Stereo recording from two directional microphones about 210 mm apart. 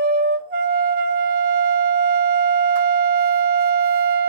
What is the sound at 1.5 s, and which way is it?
Siren, 45° right (ahead or behind).